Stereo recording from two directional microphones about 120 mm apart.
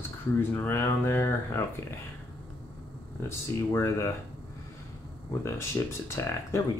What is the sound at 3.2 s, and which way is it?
Speech, 20° left (ahead or behind).